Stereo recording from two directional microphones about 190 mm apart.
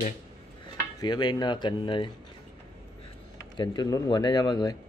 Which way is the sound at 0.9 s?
20° left (ahead or behind).